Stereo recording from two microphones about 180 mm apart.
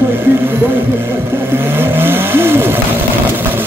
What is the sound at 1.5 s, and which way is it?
Vehicle, 10° right (ahead or behind).